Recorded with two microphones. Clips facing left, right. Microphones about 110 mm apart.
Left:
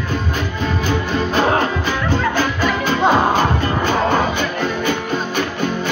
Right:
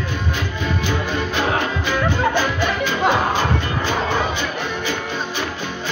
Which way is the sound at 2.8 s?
35° left (ahead or behind).